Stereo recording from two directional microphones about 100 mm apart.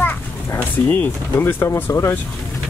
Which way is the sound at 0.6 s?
15° left (ahead or behind).